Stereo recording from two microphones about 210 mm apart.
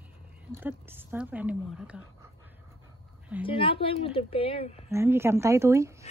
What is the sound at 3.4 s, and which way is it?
A woman's voice, 25° left (ahead or behind).